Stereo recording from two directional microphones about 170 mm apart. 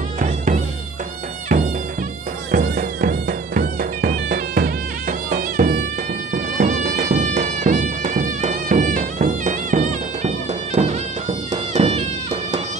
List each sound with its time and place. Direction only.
2.5 s music: 55° right (ahead or behind)
6.3 s music: 45° right (ahead or behind)